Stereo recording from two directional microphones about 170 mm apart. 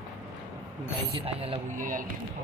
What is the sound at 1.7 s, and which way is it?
Speech, 50° right (ahead or behind).